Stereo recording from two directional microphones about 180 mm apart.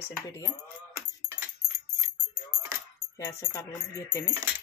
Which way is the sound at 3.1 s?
15° left (ahead or behind).